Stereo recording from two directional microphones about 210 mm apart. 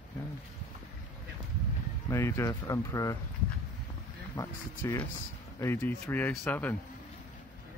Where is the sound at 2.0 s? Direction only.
15° left (ahead or behind).